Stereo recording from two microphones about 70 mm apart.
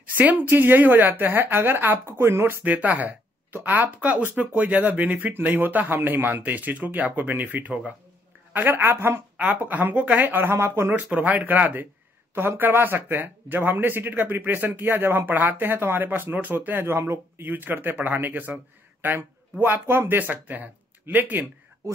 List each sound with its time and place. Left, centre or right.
0.0 s speech: right
2.6 s a woman's voice: right
10.9 s speech: right
17.5 s speech: right